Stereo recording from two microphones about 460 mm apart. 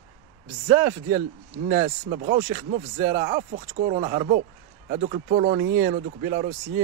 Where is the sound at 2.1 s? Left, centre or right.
Centre.